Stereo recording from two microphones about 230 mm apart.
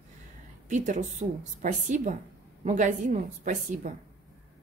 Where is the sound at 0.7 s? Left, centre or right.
Right.